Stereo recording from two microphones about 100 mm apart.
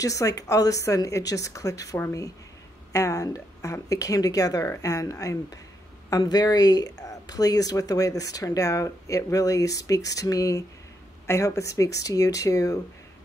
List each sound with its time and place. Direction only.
0.0 s speech: 35° left (ahead or behind)